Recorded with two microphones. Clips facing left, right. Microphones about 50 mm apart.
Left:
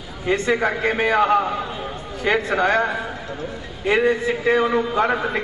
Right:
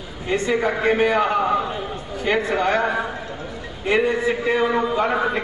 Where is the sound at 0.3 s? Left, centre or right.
Centre.